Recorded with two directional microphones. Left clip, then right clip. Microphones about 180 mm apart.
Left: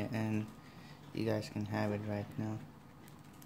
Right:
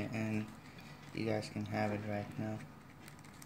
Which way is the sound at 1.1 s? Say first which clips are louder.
Left 1 dB; 45° left (ahead or behind).